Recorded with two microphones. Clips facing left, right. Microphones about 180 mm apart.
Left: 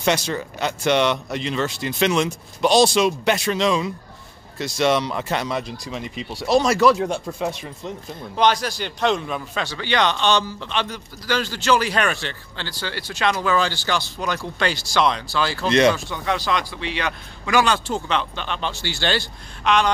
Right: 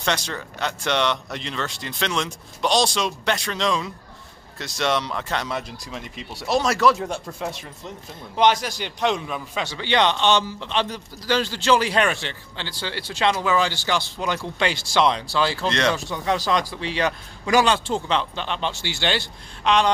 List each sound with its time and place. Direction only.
0.0 s speech: 10° left (ahead or behind)
8.4 s a man's voice: 20° right (ahead or behind)
9.2 s speech: 5° right (ahead or behind)
9.6 s a man's voice: 20° right (ahead or behind)
15.6 s speech: 10° left (ahead or behind)
16.1 s a man's voice: 35° right (ahead or behind)